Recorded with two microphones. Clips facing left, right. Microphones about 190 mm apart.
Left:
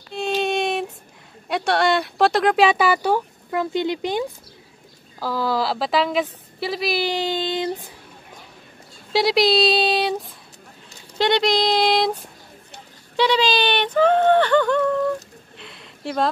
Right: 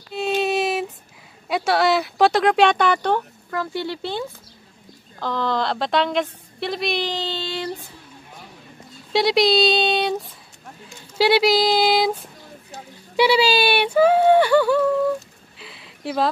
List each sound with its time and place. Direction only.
0.1 s child singing: 5° right (ahead or behind)
1.5 s speech: centre (ahead or behind)
3.4 s a woman's voice: 20° left (ahead or behind)
9.1 s speech: centre (ahead or behind)
15.5 s a sound: 5° right (ahead or behind)